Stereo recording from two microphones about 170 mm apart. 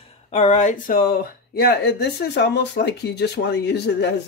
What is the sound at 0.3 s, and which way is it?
Speech, 40° left (ahead or behind).